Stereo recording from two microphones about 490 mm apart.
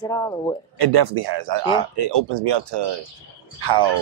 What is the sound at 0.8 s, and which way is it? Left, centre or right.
Speech, right.